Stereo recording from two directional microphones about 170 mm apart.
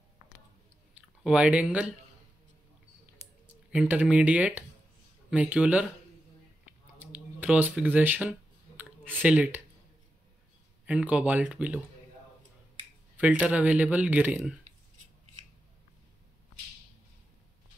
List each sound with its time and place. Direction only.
0.9 s speech: 5° right (ahead or behind)
3.7 s speech: 10° right (ahead or behind)
7.1 s clicking: 10° right (ahead or behind)
9.2 s speech: 10° right (ahead or behind)
10.9 s speech: 5° right (ahead or behind)
13.2 s speech: 10° right (ahead or behind)